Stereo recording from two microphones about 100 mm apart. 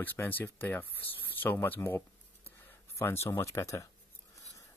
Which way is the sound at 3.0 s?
25° left (ahead or behind).